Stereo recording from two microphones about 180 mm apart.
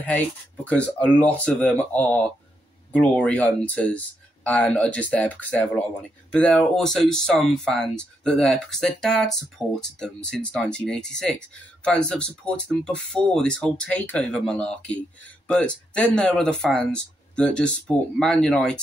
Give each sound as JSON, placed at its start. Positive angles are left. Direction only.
{"t": 0.7, "sound": "speech", "side_deg": 5}